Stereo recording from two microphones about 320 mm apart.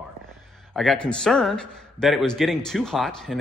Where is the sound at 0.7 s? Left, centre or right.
Centre.